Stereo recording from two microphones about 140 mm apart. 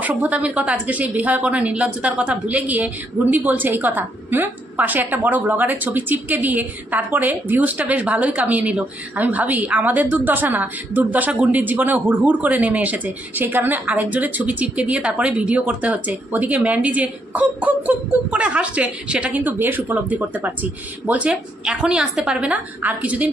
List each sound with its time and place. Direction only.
0.0 s a woman's voice: 10° right (ahead or behind)